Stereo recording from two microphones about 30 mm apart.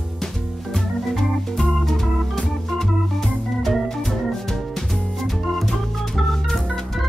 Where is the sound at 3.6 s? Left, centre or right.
Centre.